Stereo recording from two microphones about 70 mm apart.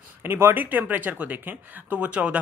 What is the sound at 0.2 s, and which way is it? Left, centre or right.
A man's voice, right.